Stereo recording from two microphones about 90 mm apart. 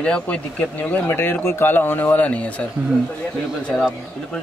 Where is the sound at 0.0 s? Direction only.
15° left (ahead or behind).